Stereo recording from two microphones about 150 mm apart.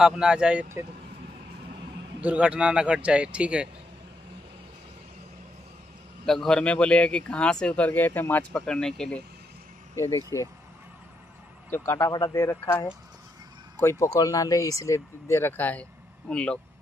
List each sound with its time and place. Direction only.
0.0 s speech: 5° right (ahead or behind)
2.2 s speech: 10° right (ahead or behind)
6.2 s speech: 5° left (ahead or behind)
9.9 s speech: 20° left (ahead or behind)
11.7 s speech: 15° left (ahead or behind)